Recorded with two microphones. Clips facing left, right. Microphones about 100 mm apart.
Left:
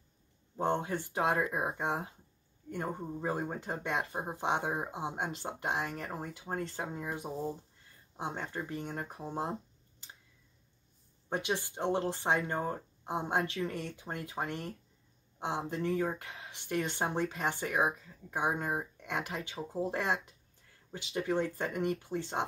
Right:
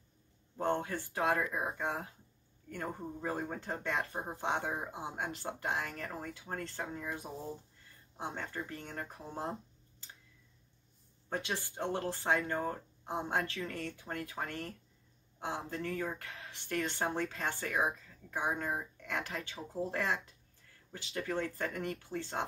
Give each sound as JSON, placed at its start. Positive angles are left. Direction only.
{"t": 0.6, "sound": "speech", "side_deg": 20}
{"t": 11.2, "sound": "speech", "side_deg": 20}
{"t": 13.4, "sound": "speech", "side_deg": 30}
{"t": 19.9, "sound": "speech", "side_deg": 30}
{"t": 20.9, "sound": "speech", "side_deg": 15}